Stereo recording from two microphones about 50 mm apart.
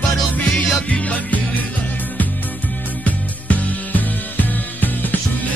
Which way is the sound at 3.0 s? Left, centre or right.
Left.